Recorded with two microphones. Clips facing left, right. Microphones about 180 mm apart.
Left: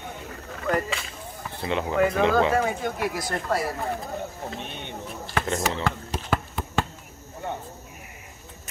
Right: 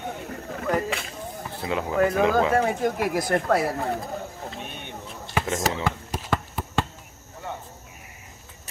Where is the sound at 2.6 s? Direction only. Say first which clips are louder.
Right 3 dB; 40° right (ahead or behind); by 3.7 s 60° right (ahead or behind).